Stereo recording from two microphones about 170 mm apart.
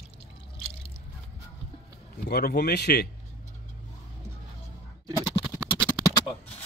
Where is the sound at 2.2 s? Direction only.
70° left (ahead or behind).